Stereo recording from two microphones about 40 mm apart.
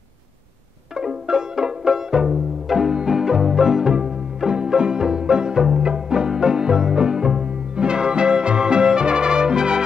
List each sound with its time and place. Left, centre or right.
1.2 s music: centre